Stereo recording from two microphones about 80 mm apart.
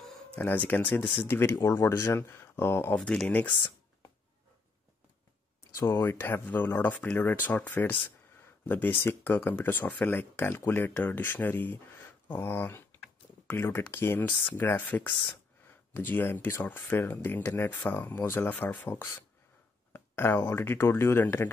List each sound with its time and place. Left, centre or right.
0.4 s speech: left
2.9 s speech: centre
3.4 s speech: left
5.9 s speech: left
18.5 s speech: centre
19.9 s speech: left